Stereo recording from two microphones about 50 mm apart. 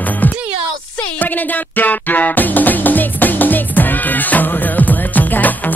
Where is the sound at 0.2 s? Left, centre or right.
Left.